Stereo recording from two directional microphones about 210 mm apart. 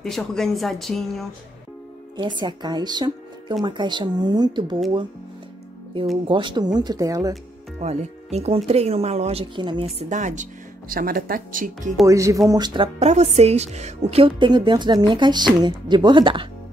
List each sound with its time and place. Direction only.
0.0 s speech: centre (ahead or behind)
2.1 s a woman's voice: 20° right (ahead or behind)
6.2 s a woman's voice: 25° right (ahead or behind)
7.8 s speech: 30° right (ahead or behind)
12.1 s a woman's voice: 15° right (ahead or behind)